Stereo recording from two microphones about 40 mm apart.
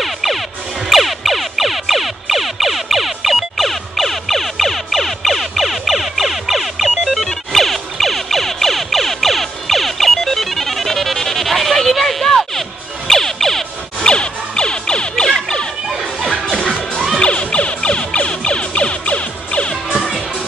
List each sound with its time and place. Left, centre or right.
0.0 s music: centre
7.2 s siren: centre
13.1 s emergency vehicle: centre
14.0 s music: left
15.4 s a sound: left
16.0 s music: centre
16.4 s music: centre
17.2 s emergency vehicle: left